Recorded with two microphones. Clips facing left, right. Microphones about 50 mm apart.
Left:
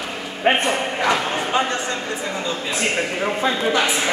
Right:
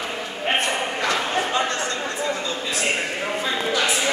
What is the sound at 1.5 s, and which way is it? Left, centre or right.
A man's voice, centre.